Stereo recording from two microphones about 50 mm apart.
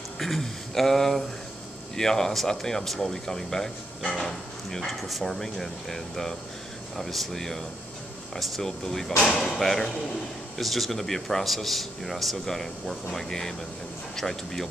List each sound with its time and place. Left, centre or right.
0.2 s speech: centre